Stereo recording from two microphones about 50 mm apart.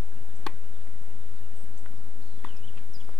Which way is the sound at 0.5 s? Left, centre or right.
Centre.